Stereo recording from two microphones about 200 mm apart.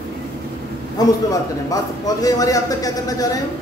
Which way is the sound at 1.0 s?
20° left (ahead or behind).